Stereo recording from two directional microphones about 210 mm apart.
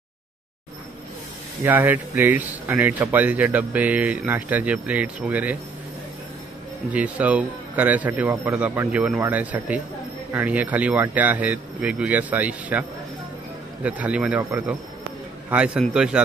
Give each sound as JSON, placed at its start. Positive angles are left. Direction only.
{"t": 1.6, "sound": "speech", "side_deg": -10}
{"t": 6.9, "sound": "speech", "side_deg": -5}
{"t": 13.8, "sound": "a man's voice", "side_deg": -5}